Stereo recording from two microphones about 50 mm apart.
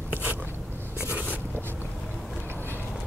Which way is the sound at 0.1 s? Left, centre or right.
Right.